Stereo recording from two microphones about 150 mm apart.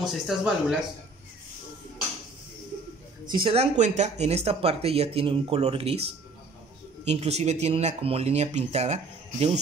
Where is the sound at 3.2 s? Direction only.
35° right (ahead or behind).